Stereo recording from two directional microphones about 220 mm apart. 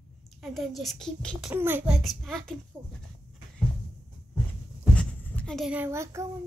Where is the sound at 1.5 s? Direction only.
10° right (ahead or behind).